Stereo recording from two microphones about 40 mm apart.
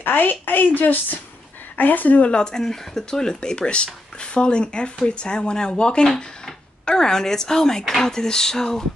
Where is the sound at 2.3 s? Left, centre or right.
Centre.